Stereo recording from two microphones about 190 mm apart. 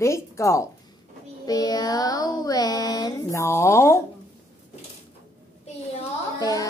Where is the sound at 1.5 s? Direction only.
20° left (ahead or behind).